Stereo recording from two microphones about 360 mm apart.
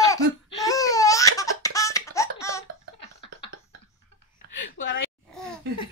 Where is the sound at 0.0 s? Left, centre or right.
Centre.